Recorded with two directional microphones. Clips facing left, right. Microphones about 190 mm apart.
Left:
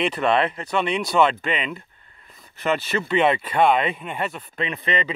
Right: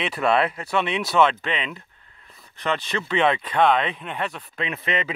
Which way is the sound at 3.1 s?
5° left (ahead or behind).